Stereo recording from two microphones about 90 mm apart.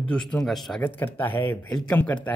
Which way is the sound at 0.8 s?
20° left (ahead or behind).